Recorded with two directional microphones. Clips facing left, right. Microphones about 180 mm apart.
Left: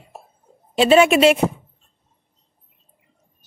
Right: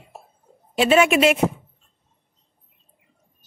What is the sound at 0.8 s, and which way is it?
Speech, 30° left (ahead or behind).